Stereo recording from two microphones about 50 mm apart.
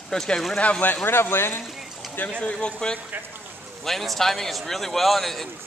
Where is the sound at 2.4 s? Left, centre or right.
Centre.